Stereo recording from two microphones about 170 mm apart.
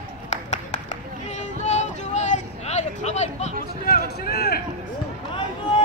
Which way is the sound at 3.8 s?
65° left (ahead or behind).